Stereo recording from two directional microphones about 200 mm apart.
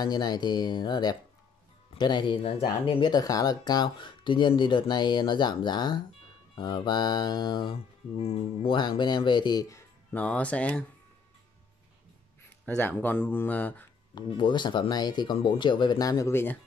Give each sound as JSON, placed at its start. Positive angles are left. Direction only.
{"t": 0.0, "sound": "mantra", "side_deg": 20}
{"t": 12.6, "sound": "speech", "side_deg": 10}
{"t": 14.1, "sound": "mantra", "side_deg": 20}